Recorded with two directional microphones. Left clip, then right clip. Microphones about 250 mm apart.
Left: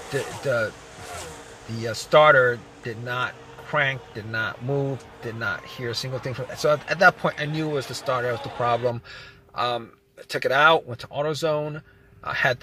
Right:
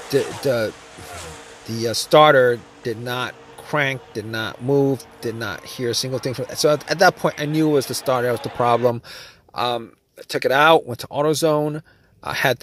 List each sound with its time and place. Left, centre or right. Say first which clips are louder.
0.0 s speech: right 8 dB; centre
0.7 s a sound: right 4 dB; centre
1.7 s speech: right 4 dB; right